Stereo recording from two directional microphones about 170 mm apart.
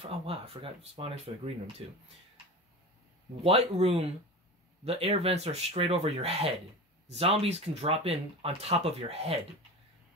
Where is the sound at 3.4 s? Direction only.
35° right (ahead or behind).